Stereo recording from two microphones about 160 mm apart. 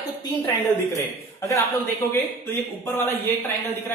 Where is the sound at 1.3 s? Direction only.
15° left (ahead or behind).